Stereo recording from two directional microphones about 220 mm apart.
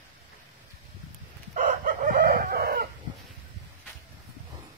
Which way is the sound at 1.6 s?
35° right (ahead or behind).